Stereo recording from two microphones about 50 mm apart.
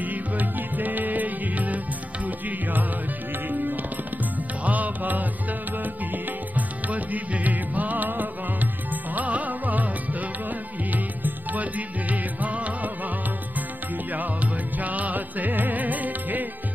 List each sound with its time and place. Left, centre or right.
0.0 s music: right
3.4 s music: right
6.5 s music: right
10.9 s music: right
14.1 s music: right